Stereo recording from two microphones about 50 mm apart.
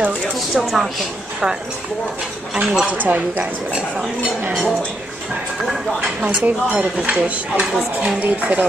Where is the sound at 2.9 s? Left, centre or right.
Right.